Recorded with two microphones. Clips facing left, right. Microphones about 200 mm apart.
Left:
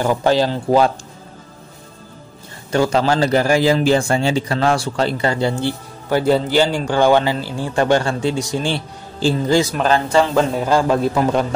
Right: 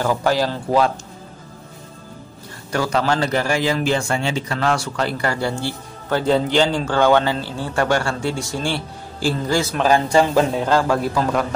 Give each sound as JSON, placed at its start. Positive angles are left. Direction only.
{"t": 0.0, "sound": "a man's voice", "side_deg": 20}
{"t": 2.7, "sound": "a man's voice", "side_deg": 25}
{"t": 9.8, "sound": "speech", "side_deg": -10}
{"t": 10.6, "sound": "a man's voice", "side_deg": 15}